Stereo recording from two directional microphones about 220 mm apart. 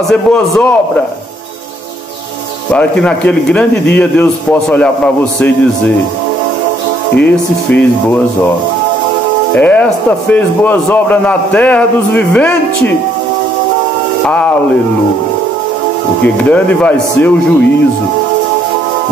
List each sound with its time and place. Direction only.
0.1 s a man's voice: 5° left (ahead or behind)
2.7 s a man's voice: 5° left (ahead or behind)
7.2 s a man's voice: 5° left (ahead or behind)
9.6 s a man's voice: 5° left (ahead or behind)
14.2 s a man's voice: 5° left (ahead or behind)
16.4 s a man's voice: 5° left (ahead or behind)